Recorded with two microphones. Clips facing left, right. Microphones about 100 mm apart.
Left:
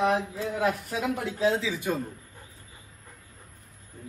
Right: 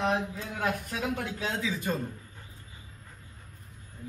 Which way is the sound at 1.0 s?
30° left (ahead or behind).